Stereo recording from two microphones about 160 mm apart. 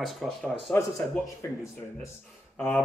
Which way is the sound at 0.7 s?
15° left (ahead or behind).